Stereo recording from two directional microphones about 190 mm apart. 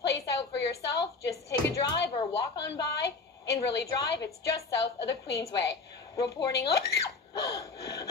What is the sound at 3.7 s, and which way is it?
Speech, 60° left (ahead or behind).